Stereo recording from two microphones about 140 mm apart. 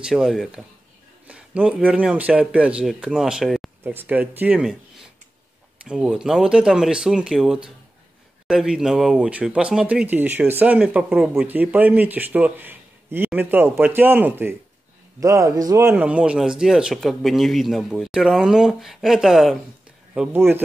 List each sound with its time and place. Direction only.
0.0 s speech: 5° right (ahead or behind)
3.8 s speech: 15° right (ahead or behind)
5.9 s speech: 5° right (ahead or behind); by 15.9 s 25° right (ahead or behind)
15.9 s speech: 10° right (ahead or behind)
20.3 s speech: 15° right (ahead or behind)